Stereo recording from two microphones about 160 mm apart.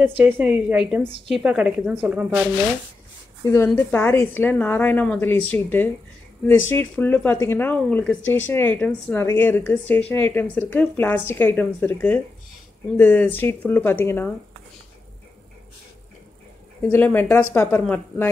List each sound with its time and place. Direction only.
0.2 s speech: 10° right (ahead or behind)
3.4 s speech: 15° left (ahead or behind)
16.8 s speech: 10° left (ahead or behind)